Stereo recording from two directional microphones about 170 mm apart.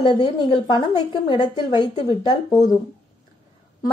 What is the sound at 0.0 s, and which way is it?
A woman's voice, 25° left (ahead or behind).